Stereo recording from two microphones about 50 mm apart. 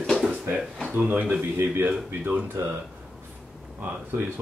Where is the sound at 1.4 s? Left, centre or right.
Right.